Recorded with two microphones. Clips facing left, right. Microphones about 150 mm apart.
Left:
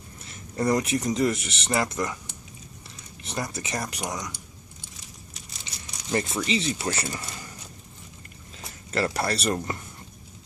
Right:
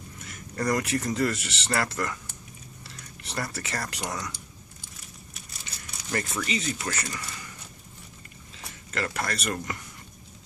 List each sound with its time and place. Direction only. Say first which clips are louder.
0.2 s speech: left 3 dB; 25° left (ahead or behind)
3.2 s speech: left 2 dB; 20° left (ahead or behind)
6.0 s speech: left 4 dB; 25° left (ahead or behind)
8.9 s speech: left 5 dB; 30° left (ahead or behind)